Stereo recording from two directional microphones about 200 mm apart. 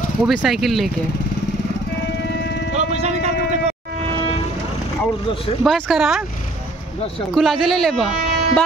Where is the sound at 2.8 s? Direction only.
35° right (ahead or behind).